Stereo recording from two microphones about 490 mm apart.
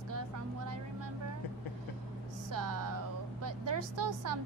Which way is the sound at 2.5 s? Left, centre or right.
Right.